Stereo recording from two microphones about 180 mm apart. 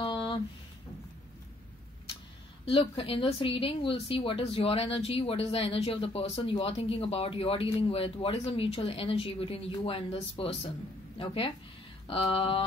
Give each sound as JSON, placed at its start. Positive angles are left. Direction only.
{"t": 2.7, "sound": "speech", "side_deg": 30}